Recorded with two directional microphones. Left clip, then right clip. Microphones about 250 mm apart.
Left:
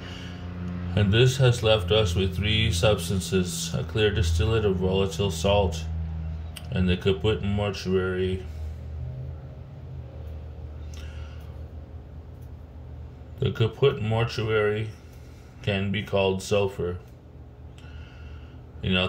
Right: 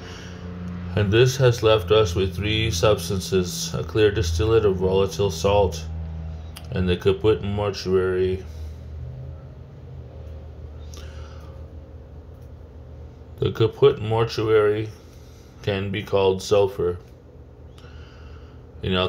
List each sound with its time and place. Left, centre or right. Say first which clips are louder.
0.9 s speech: right 4 dB; centre
13.4 s speech: right 6 dB; centre
18.8 s a man's voice: right 2 dB; right